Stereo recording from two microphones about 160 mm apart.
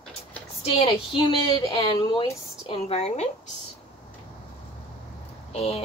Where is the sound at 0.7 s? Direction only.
35° left (ahead or behind).